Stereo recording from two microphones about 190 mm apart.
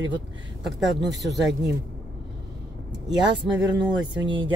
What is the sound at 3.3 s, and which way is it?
Speech, 25° right (ahead or behind).